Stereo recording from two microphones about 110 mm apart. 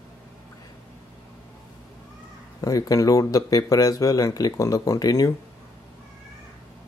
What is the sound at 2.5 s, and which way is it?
Speech, 35° left (ahead or behind).